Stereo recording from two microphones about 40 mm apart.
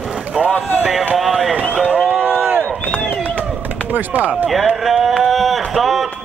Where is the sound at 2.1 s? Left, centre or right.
Centre.